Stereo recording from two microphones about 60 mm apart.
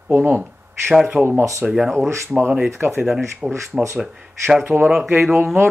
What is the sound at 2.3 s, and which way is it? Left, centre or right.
Speech, right.